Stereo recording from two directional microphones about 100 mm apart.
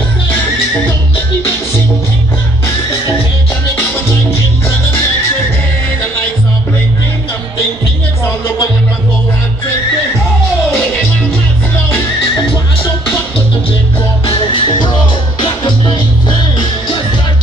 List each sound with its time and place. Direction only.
0.3 s music: 15° left (ahead or behind)
8.3 s music: 30° left (ahead or behind)
14.2 s music: 55° left (ahead or behind)